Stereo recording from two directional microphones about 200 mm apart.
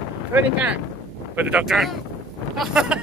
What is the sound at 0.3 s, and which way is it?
Speech, 5° right (ahead or behind).